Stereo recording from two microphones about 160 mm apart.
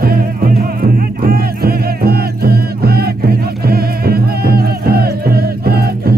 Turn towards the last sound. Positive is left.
turn(degrees=-75)  # may be behind; listen again after turning